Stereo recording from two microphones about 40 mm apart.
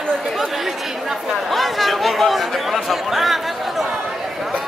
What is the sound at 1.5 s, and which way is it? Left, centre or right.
Chatter, centre.